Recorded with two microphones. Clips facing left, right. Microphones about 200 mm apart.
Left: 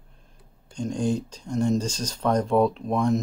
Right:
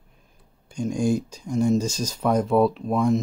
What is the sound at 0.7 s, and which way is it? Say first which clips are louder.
Speech: right 3 dB; 10° right (ahead or behind).